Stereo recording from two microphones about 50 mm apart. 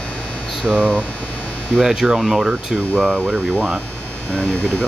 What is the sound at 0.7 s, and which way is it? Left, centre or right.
Speech, right.